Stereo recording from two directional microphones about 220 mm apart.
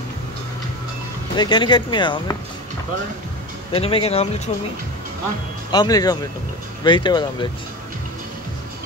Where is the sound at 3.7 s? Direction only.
25° left (ahead or behind).